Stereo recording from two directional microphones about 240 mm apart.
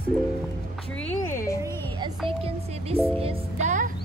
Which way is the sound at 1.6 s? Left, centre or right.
Centre.